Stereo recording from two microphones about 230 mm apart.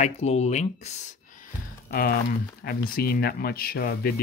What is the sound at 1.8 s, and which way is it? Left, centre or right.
Speech, left.